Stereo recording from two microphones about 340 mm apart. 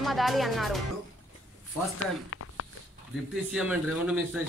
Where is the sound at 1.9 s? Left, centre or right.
Left.